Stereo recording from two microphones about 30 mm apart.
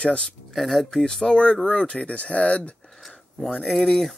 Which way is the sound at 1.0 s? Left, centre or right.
Centre.